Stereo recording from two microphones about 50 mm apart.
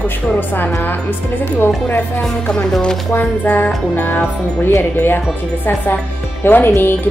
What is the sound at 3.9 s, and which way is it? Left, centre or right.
Speech, left.